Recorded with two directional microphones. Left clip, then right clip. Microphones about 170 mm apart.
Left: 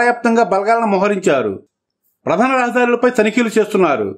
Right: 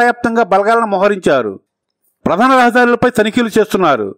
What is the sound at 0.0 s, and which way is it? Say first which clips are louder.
A man's voice: right 1 dB; 50° right (ahead or behind).